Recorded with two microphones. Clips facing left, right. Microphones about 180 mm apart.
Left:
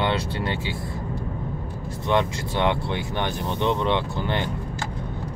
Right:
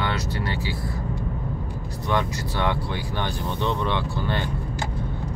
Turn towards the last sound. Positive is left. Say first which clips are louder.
# left 1 dB
turn(degrees=20)  # may be behind; listen again after turning